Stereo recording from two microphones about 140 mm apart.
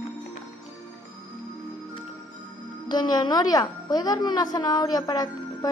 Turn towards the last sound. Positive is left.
turn(degrees=30)  # may be behind; listen again after turning